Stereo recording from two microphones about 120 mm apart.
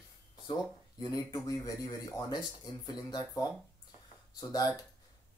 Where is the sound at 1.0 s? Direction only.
30° left (ahead or behind).